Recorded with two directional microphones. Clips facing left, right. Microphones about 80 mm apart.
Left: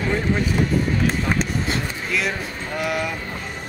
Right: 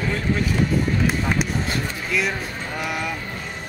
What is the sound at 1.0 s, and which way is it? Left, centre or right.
Speech, centre.